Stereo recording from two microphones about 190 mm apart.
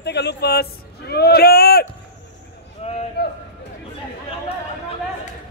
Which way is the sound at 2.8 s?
30° left (ahead or behind).